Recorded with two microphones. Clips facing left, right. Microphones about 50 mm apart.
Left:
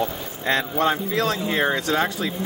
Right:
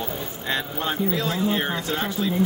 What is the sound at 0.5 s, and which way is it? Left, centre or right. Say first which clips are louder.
Speech: left 6 dB; left.